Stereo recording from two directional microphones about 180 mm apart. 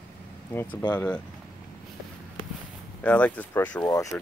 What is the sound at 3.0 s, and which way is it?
Speech, 5° left (ahead or behind).